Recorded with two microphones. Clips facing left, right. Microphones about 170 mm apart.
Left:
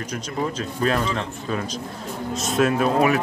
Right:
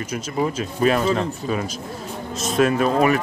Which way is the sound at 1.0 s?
40° right (ahead or behind).